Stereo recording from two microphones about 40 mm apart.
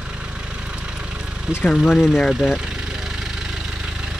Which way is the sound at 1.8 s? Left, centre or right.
Centre.